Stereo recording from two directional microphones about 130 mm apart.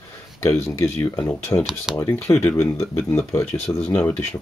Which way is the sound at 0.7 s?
20° left (ahead or behind).